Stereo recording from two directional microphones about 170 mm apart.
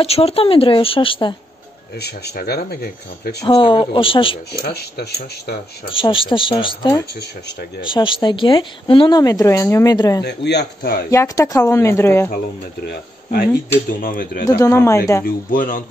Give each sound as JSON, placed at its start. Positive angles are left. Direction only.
{"t": 0.0, "sound": "speech", "side_deg": 35}
{"t": 2.0, "sound": "speech", "side_deg": 75}
{"t": 3.3, "sound": "speech", "side_deg": 30}
{"t": 4.6, "sound": "speech", "side_deg": 65}
{"t": 5.9, "sound": "speech", "side_deg": 30}
{"t": 10.2, "sound": "speech", "side_deg": 80}
{"t": 11.1, "sound": "speech", "side_deg": 20}
{"t": 12.8, "sound": "speech", "side_deg": 60}
{"t": 14.6, "sound": "speech", "side_deg": 20}
{"t": 15.2, "sound": "speech", "side_deg": 55}